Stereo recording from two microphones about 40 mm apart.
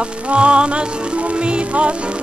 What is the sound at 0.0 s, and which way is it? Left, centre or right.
Music, right.